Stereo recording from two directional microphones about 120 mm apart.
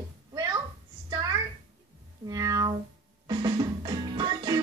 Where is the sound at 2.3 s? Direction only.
30° right (ahead or behind).